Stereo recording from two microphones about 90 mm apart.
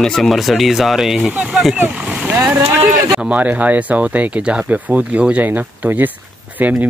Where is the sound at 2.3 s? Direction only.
20° right (ahead or behind).